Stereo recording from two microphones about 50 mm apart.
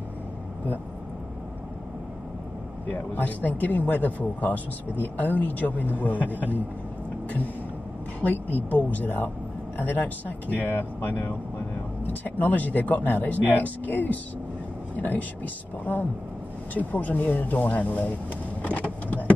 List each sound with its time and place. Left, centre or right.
2.9 s speech: left
8.2 s speech: left
18.6 s vehicle: left